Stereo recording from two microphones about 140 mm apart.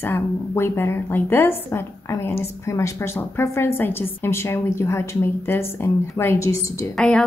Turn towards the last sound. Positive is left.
turn(degrees=5)  # may be behind; listen again after turning